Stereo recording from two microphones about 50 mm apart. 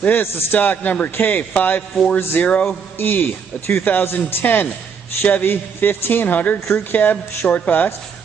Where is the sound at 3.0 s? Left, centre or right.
Left.